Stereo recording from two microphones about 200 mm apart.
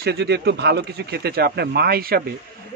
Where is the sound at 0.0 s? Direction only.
55° right (ahead or behind).